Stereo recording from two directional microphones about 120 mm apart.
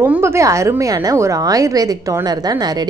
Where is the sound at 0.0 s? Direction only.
20° right (ahead or behind).